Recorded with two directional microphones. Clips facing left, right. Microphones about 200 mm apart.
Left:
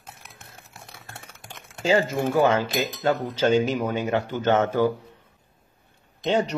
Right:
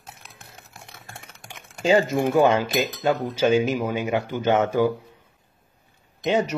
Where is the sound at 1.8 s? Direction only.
20° right (ahead or behind).